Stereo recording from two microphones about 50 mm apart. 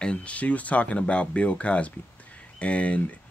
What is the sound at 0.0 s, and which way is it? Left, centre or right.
Speech, left.